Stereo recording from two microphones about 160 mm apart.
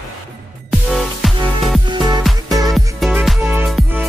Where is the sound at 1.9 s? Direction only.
25° right (ahead or behind).